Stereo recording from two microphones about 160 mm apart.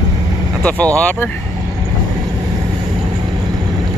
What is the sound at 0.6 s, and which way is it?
Speech, 10° left (ahead or behind).